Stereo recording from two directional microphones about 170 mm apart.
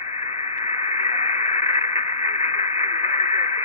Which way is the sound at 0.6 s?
35° left (ahead or behind).